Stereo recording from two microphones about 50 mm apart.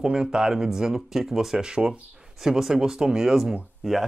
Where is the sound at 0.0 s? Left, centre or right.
Centre.